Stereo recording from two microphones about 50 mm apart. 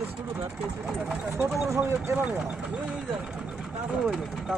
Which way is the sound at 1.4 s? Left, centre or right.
Right.